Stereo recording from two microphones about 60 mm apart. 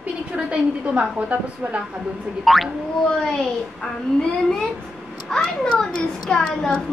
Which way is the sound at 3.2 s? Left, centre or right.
Centre.